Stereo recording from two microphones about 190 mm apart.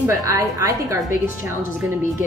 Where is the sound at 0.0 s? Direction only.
15° right (ahead or behind).